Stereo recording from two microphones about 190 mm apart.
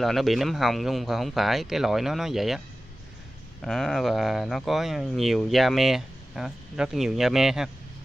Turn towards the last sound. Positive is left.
turn(degrees=0)  # may be behind; listen again after turning